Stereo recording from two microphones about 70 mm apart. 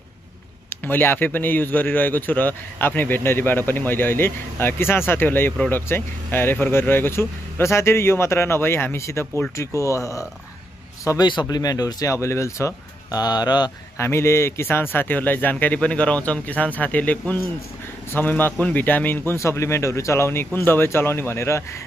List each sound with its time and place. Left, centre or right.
0.7 s a man's voice: left
11.1 s speech: left
11.4 s speech: left
12.2 s speech: left
13.1 s speech: left
13.9 s a man's voice: left
19.3 s speech: left